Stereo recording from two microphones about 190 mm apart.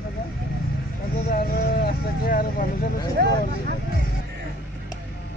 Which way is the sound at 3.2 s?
55° right (ahead or behind).